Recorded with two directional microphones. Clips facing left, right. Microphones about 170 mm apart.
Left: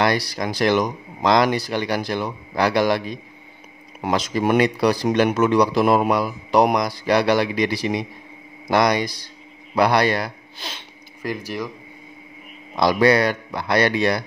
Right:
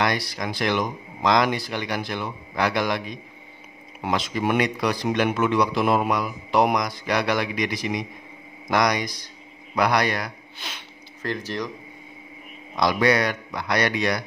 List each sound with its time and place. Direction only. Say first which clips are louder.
0.0 s speech: left 4 dB; 35° left (ahead or behind)
11.2 s speech: left 1 dB; 10° left (ahead or behind)
12.7 s speech: left 4 dB; 30° left (ahead or behind)